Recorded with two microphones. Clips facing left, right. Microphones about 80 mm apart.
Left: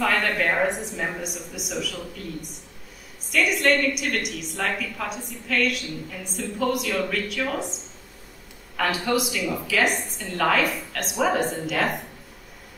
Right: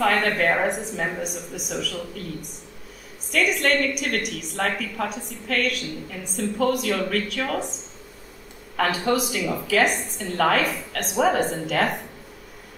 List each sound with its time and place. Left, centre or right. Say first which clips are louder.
0.0 s a woman's voice: right 2 dB; right
3.5 s a woman's voice: left 1 dB; right
8.7 s a woman's voice: right 2 dB; right